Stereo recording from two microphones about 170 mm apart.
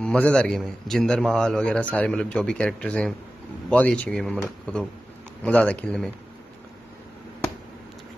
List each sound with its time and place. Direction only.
0.0 s a man's voice: 5° left (ahead or behind)